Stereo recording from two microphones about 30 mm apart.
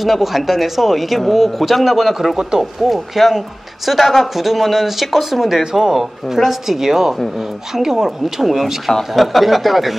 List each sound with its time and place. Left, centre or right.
0.0 s speech: centre
5.7 s speech: centre
5.9 s speech: centre